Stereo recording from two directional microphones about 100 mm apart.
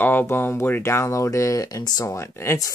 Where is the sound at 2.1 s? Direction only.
30° left (ahead or behind).